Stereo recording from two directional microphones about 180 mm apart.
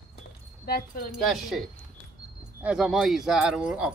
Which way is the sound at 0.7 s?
60° left (ahead or behind).